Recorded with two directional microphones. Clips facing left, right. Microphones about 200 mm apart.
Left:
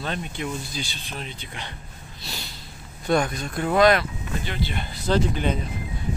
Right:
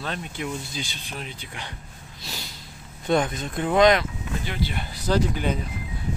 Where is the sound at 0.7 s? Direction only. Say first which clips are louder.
Left 1 dB; 15° right (ahead or behind).